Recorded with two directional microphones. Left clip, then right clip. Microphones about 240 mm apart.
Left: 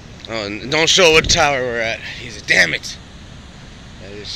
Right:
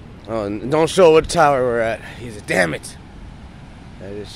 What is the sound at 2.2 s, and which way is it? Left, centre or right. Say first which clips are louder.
Speech: left 5 dB; right.